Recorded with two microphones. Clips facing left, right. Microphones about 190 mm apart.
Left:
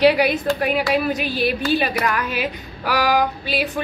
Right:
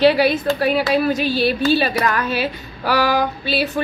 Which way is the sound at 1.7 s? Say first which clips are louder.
Right 3 dB; 15° left (ahead or behind).